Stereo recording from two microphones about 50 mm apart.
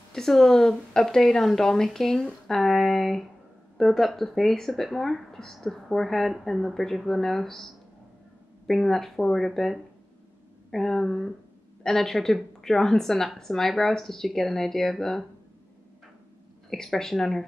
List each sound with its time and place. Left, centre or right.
0.1 s a woman's voice: centre
16.7 s a woman's voice: centre